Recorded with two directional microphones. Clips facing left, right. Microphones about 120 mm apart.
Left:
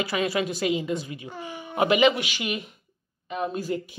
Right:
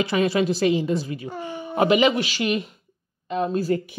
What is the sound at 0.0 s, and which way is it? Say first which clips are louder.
Speech: right 5 dB; 25° right (ahead or behind).